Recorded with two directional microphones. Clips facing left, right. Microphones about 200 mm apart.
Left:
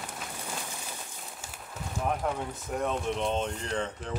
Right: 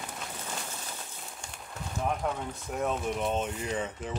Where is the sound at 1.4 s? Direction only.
5° left (ahead or behind).